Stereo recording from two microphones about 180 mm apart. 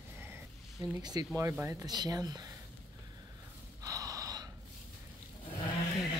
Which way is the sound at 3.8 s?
20° right (ahead or behind).